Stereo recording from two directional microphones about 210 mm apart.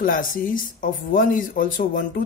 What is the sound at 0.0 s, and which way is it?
Speech, 40° left (ahead or behind).